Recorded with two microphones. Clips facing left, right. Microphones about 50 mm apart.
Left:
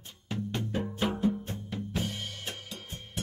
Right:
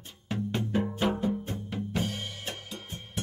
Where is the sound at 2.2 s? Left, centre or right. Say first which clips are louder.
Right 1 dB; centre.